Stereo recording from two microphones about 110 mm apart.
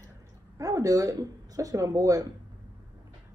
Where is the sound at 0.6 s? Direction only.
35° right (ahead or behind).